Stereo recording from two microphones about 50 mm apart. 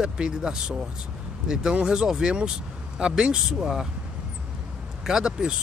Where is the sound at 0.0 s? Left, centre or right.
Centre.